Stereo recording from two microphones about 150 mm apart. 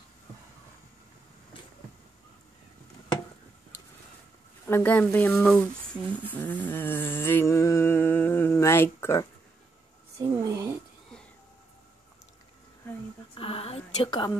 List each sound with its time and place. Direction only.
4.6 s speech: 15° left (ahead or behind)
6.2 s a sound: 10° left (ahead or behind)
10.3 s speech: 20° right (ahead or behind)
13.3 s speech: 40° left (ahead or behind)